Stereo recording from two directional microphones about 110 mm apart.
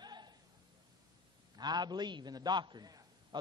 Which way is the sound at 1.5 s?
40° right (ahead or behind).